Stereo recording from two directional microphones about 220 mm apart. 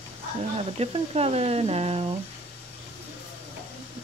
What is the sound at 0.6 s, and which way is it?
Speech, 25° right (ahead or behind).